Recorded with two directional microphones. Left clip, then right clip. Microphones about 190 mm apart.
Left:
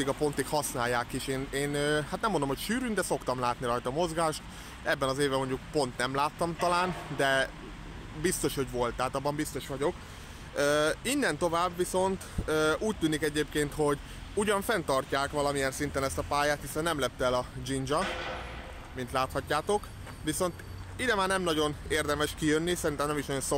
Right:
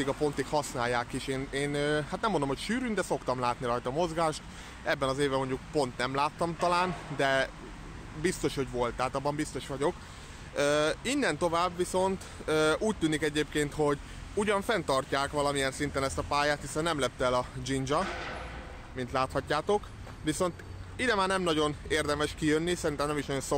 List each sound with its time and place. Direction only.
0.0 s speech: centre (ahead or behind)